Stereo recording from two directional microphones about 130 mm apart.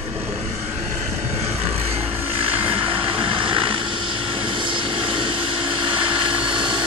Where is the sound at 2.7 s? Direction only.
45° right (ahead or behind).